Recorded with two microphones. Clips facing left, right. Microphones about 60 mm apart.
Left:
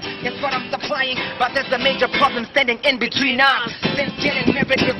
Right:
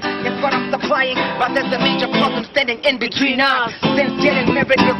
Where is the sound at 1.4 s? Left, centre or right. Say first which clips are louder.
Left 1 dB; centre.